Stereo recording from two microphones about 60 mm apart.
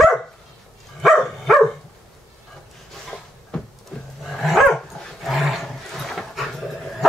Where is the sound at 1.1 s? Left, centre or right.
Centre.